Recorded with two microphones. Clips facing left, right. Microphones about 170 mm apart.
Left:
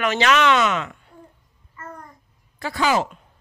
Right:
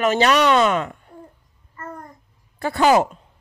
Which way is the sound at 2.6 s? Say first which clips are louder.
Right 5 dB; 50° right (ahead or behind).